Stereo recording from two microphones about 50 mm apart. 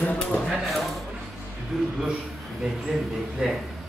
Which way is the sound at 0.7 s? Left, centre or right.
Centre.